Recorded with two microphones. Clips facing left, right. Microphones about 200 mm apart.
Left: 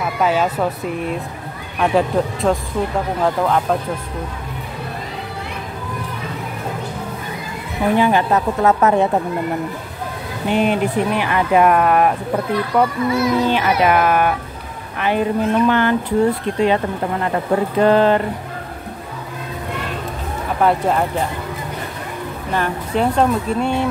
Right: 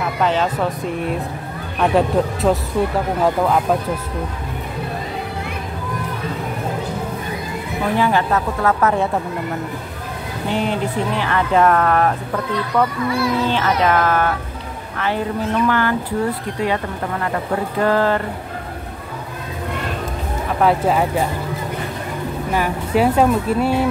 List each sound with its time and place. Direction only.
0.2 s speech: 10° left (ahead or behind)
1.8 s speech: centre (ahead or behind)
7.9 s speech: 15° left (ahead or behind)
10.5 s speech: 15° left (ahead or behind)
20.6 s speech: centre (ahead or behind)
22.5 s speech: 10° right (ahead or behind)